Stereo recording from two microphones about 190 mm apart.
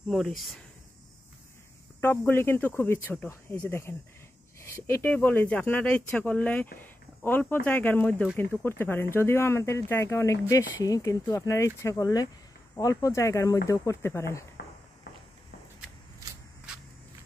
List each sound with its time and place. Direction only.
0.1 s speech: centre (ahead or behind)
2.0 s speech: 10° left (ahead or behind)
6.8 s a sound: 10° left (ahead or behind)
7.6 s speech: 10° left (ahead or behind)